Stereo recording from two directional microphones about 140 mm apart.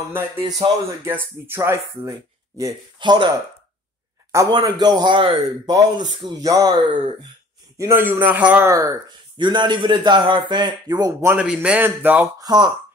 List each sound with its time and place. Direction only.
1.0 s speech: 15° right (ahead or behind); by 3.3 s 35° right (ahead or behind)
4.5 s a man's voice: 30° right (ahead or behind)
8.0 s a man's voice: 10° right (ahead or behind)
8.6 s speech: 20° right (ahead or behind)
9.4 s a man's voice: 35° right (ahead or behind)
11.3 s a man's voice: 5° right (ahead or behind)
12.4 s speech: 30° right (ahead or behind)